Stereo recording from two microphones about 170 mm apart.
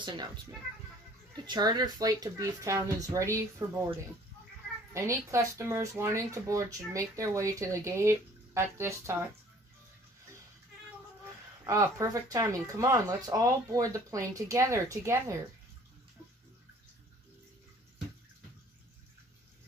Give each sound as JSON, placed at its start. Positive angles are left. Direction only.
{"t": 0.0, "sound": "a woman's voice", "side_deg": -25}
{"t": 1.3, "sound": "speech", "side_deg": -25}
{"t": 4.9, "sound": "speech", "side_deg": -15}
{"t": 11.6, "sound": "speech", "side_deg": -20}